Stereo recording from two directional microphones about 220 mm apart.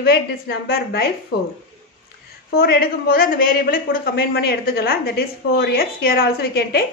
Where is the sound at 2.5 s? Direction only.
45° left (ahead or behind).